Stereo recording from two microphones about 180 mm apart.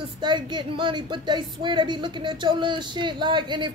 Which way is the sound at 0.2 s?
25° right (ahead or behind).